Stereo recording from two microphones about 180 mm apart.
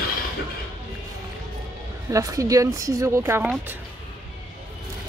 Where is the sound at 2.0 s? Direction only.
20° right (ahead or behind).